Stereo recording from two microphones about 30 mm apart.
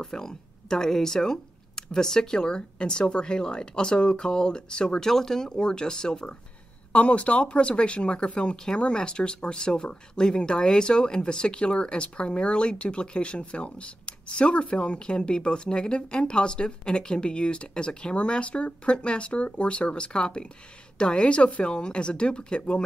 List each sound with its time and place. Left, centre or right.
0.0 s speech: centre
5.1 s speech: centre
5.6 s speech: left
6.9 s speech: left